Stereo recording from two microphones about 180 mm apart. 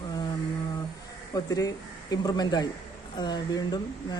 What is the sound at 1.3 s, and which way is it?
Speech, 20° left (ahead or behind).